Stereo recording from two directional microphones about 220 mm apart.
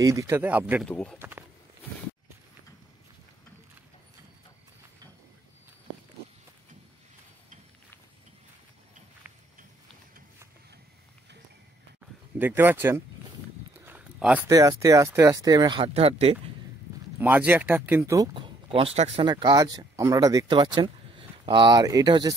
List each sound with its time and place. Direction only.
0.0 s speech: 15° right (ahead or behind)
0.8 s speech: 5° left (ahead or behind)
12.4 s speech: 10° right (ahead or behind); by 16.3 s 25° right (ahead or behind)
17.2 s speech: 10° right (ahead or behind)